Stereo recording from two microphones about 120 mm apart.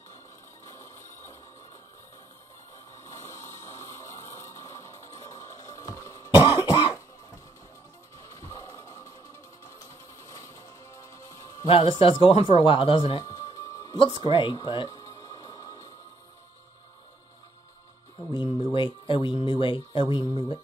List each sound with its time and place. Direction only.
0.7 s a sound: 25° left (ahead or behind)
3.0 s music: 25° left (ahead or behind)
6.3 s cough: 20° right (ahead or behind)
8.2 s music: 30° left (ahead or behind)
10.2 s music: 25° left (ahead or behind)
11.6 s speech: 50° left (ahead or behind)
13.2 s music: 30° left (ahead or behind)
14.3 s speech: 40° left (ahead or behind)
14.9 s music: 30° left (ahead or behind)
18.3 s speech: 40° left (ahead or behind)